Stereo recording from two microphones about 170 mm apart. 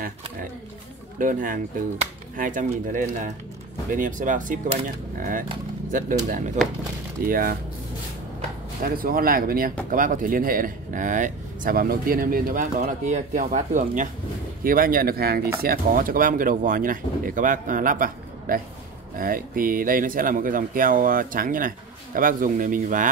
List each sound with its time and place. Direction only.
1.1 s speech: 50° right (ahead or behind)
8.8 s speech: 60° right (ahead or behind)